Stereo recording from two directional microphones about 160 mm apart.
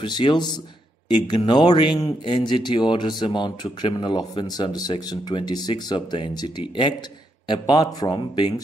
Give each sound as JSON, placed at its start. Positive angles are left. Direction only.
{"t": 0.0, "sound": "speech", "side_deg": 30}